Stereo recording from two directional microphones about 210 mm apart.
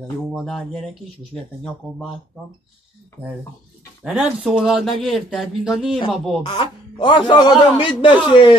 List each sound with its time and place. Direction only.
0.3 s speech: centre (ahead or behind)
4.0 s speech: 5° right (ahead or behind)
6.4 s a man's voice: 20° left (ahead or behind)